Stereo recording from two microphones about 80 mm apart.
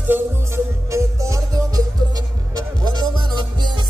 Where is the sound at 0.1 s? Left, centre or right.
Right.